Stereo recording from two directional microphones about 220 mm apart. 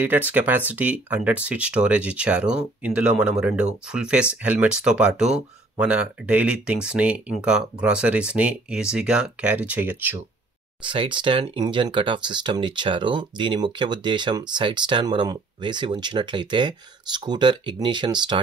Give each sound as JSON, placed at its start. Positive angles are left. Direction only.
{"t": 0.0, "sound": "speech", "side_deg": -10}
{"t": 10.8, "sound": "speech", "side_deg": -20}